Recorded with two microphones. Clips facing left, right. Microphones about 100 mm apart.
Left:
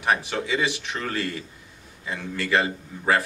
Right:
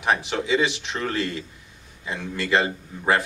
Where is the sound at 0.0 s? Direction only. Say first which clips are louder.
Right 1 dB; 20° right (ahead or behind).